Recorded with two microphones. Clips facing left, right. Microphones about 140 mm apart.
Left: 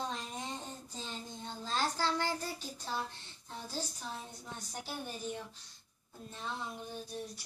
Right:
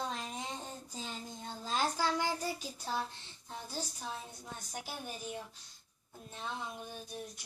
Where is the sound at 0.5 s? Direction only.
10° right (ahead or behind).